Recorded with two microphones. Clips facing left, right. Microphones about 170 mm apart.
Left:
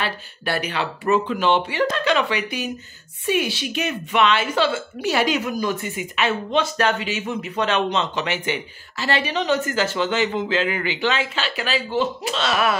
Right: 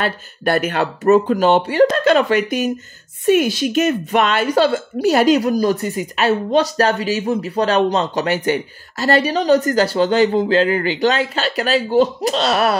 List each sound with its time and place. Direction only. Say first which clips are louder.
0.0 s a woman's voice: right 7 dB; 50° right (ahead or behind)